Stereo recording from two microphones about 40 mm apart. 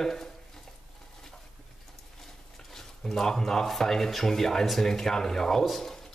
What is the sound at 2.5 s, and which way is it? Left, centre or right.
Speech, centre.